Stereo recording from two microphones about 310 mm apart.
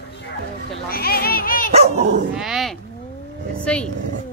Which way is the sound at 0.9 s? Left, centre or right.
Left.